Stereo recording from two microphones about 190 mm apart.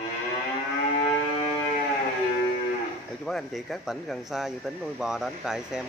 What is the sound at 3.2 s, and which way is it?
Speech, centre (ahead or behind).